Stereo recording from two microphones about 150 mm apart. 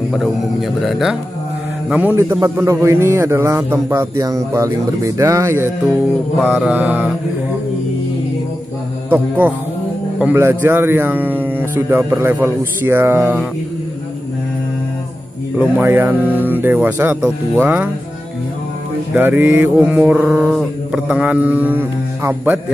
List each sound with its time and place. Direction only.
0.1 s a man's voice: centre (ahead or behind)
10.1 s a man's voice: 10° right (ahead or behind)
15.5 s a man's voice: 10° right (ahead or behind)
19.1 s a man's voice: 10° right (ahead or behind)